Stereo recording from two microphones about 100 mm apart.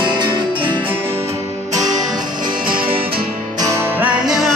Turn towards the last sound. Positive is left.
turn(degrees=0)  # may be behind; listen again after turning